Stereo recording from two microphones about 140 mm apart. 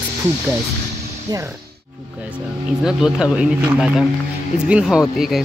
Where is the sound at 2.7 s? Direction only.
5° right (ahead or behind).